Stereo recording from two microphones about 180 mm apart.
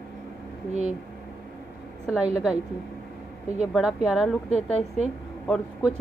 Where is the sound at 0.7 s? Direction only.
40° right (ahead or behind).